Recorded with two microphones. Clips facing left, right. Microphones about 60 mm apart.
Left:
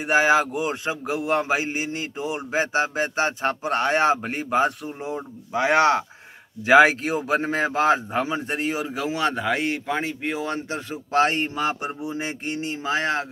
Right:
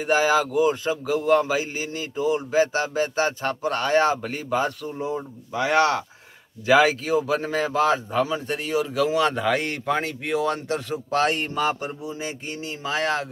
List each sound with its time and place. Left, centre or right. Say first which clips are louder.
0.0 s speech: left 1 dB; left; by 10.1 s centre
10.2 s speech: right 3 dB; left
11.9 s speech: left 2 dB; left